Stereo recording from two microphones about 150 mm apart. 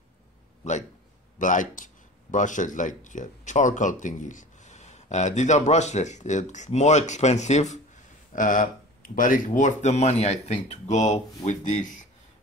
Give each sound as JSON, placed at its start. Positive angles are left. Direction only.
{"t": 0.6, "sound": "speech", "side_deg": 50}
{"t": 8.3, "sound": "speech", "side_deg": 60}